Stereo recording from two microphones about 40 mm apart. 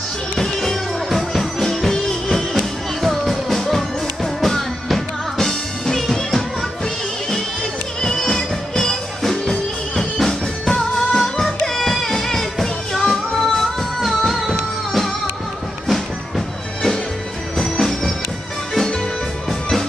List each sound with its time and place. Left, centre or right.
0.4 s music: centre
8.0 s music: centre
10.7 s music: centre